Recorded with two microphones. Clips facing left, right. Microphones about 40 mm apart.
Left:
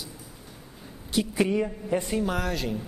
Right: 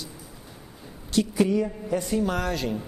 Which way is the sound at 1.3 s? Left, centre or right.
Left.